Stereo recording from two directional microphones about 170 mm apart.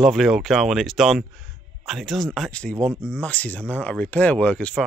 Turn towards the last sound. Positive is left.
turn(degrees=5)  # may be behind; listen again after turning